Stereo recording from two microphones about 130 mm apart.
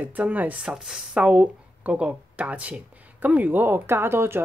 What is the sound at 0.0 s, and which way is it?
Speech, 15° right (ahead or behind).